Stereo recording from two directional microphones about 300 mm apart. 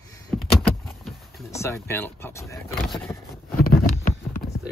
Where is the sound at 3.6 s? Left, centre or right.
Left.